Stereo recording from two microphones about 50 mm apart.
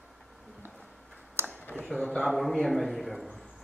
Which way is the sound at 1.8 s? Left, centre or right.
Centre.